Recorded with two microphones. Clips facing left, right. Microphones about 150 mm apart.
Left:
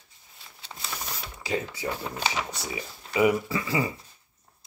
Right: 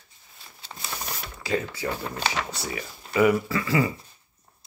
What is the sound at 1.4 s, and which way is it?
Speech, 20° left (ahead or behind).